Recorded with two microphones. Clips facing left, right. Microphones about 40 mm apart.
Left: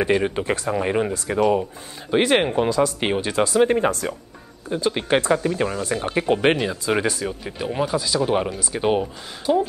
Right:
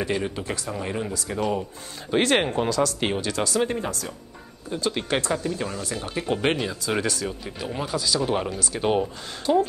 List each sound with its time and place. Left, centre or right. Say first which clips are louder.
0.0 s speech: left 6 dB; left
1.5 s speech: left 6 dB; centre
2.1 s speech: left 3 dB; centre; by 4.1 s left
4.6 s speech: left 4 dB; centre